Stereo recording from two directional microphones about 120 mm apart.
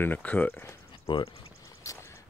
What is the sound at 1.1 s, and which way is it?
Speech, 40° left (ahead or behind).